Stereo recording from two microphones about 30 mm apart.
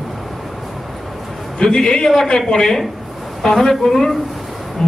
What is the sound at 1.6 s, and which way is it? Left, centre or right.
A man's voice, left.